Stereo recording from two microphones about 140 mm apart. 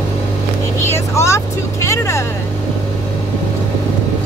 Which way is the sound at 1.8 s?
20° left (ahead or behind).